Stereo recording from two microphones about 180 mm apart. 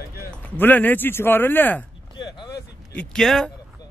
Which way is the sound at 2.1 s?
25° left (ahead or behind).